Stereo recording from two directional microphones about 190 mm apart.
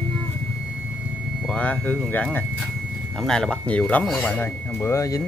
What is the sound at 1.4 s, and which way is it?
Speech, 5° left (ahead or behind).